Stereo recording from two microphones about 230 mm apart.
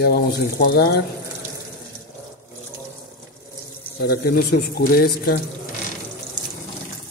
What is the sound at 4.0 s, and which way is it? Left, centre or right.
Speech, left.